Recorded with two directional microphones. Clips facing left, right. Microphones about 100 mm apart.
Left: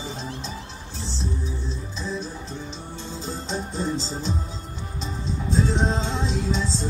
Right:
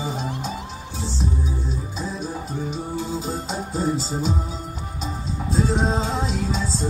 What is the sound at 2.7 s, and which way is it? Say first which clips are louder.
Music: right 8 dB; 10° right (ahead or behind).